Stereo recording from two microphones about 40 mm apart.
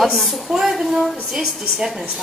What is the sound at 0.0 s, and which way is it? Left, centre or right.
A woman's voice, centre.